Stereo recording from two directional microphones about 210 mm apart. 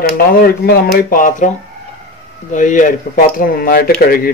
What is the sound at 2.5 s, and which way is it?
Speech, 40° left (ahead or behind).